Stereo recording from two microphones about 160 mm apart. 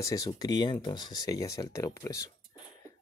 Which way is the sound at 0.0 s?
20° left (ahead or behind).